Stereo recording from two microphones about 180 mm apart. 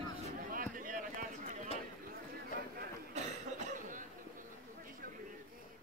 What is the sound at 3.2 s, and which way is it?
Cough, 35° right (ahead or behind).